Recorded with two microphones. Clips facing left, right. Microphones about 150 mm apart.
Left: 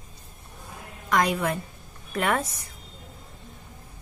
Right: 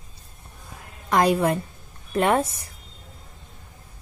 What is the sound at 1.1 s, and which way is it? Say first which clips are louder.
A woman's voice: right 4 dB; 35° right (ahead or behind).